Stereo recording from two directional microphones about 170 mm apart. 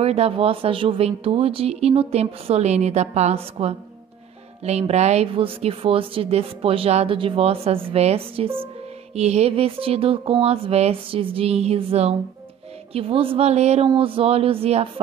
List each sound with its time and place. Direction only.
0.0 s speech: 35° right (ahead or behind)